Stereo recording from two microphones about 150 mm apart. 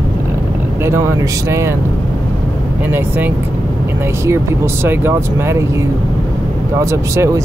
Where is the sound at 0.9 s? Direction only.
15° right (ahead or behind).